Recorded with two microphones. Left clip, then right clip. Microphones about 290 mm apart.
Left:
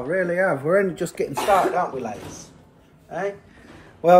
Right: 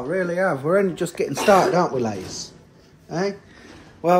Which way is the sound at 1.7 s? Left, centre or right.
Right.